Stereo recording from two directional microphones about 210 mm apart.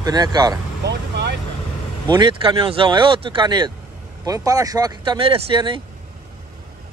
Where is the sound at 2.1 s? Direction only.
20° right (ahead or behind).